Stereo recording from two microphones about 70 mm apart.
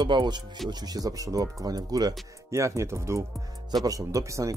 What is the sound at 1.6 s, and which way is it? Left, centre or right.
Speech, right.